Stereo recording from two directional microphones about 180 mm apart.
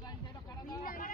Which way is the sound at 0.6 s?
50° left (ahead or behind).